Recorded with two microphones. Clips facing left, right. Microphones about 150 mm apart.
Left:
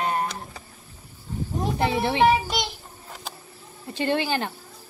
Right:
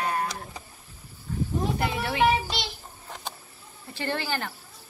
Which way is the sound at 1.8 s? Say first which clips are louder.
Left 6 dB; 30° left (ahead or behind).